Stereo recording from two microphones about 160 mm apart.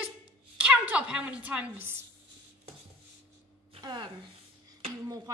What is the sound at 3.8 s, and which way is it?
Speech, 25° right (ahead or behind).